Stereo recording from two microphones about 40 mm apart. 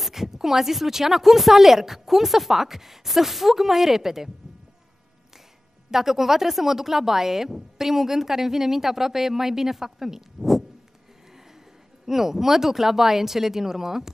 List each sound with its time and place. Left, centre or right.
0.0 s speech: centre
5.9 s speech: centre
12.1 s speech: centre